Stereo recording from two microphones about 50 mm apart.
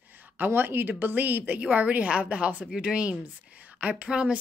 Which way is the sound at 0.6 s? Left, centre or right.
Right.